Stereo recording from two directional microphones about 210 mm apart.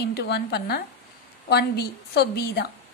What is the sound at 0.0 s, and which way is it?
A woman's voice, 50° left (ahead or behind).